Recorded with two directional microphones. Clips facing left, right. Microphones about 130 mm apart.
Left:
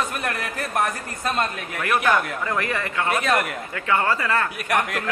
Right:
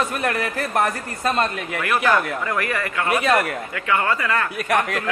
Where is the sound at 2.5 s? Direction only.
25° left (ahead or behind).